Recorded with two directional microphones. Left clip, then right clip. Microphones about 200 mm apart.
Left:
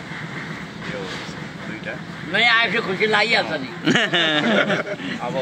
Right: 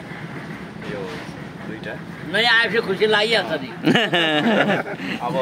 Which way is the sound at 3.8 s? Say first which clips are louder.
Even; 30° right (ahead or behind).